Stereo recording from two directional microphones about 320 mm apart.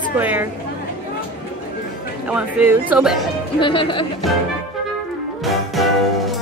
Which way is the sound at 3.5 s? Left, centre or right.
Centre.